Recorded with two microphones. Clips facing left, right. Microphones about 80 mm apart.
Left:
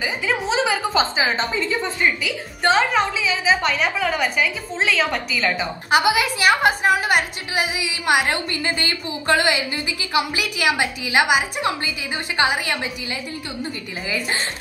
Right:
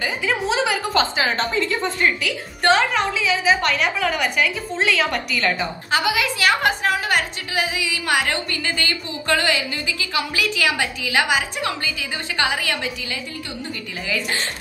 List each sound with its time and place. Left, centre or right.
0.0 s a woman's voice: centre
2.0 s a woman's voice: centre
2.6 s a woman's voice: centre
5.9 s a woman's voice: centre